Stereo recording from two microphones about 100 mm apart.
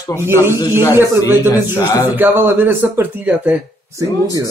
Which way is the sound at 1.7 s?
30° left (ahead or behind).